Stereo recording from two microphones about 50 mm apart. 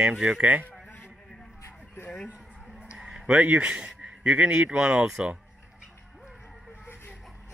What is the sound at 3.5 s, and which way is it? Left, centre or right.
Speech, right.